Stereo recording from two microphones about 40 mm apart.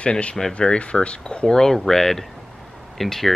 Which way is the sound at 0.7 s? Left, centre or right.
Left.